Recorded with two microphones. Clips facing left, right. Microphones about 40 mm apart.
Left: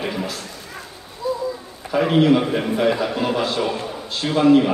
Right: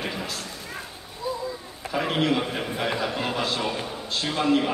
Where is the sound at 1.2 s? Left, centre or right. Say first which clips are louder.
Left 6 dB; right.